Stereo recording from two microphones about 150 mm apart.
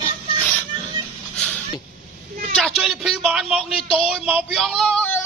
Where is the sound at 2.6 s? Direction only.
Centre (ahead or behind).